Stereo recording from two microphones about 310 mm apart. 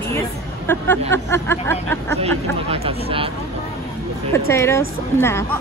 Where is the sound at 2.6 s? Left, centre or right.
Centre.